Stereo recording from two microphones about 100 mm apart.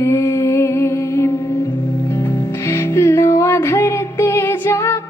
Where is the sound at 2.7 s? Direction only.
30° left (ahead or behind).